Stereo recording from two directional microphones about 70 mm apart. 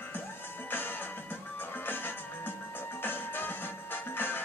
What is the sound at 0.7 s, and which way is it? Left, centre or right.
Music, left.